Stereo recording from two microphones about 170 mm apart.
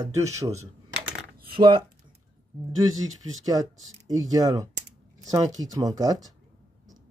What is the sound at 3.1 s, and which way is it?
Speech, 20° right (ahead or behind).